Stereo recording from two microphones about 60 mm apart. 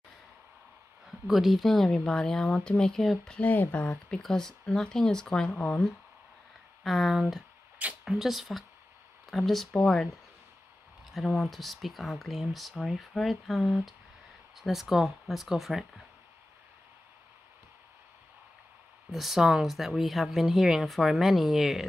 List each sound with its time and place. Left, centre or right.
1.2 s speech: centre
3.3 s speech: left
4.1 s speech: centre
11.1 s speech: centre
19.0 s speech: centre